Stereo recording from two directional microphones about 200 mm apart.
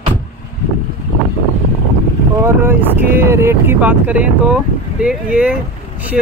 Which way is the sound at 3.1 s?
15° right (ahead or behind).